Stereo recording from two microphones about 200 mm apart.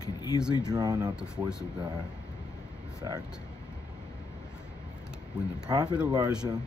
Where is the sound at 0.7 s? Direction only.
20° right (ahead or behind).